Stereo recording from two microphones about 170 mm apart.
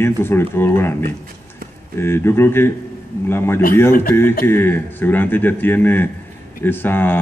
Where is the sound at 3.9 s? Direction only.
55° left (ahead or behind).